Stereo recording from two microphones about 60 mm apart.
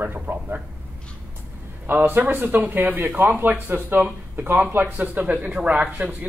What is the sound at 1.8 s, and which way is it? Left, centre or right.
Speech, right.